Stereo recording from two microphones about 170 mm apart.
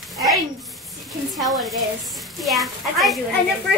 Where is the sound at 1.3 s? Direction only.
Centre (ahead or behind).